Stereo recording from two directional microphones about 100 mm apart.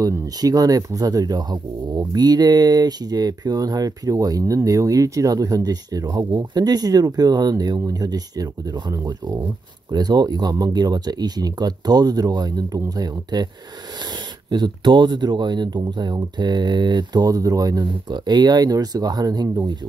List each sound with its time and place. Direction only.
0.0 s speech: 40° right (ahead or behind)
14.5 s speech: 50° right (ahead or behind)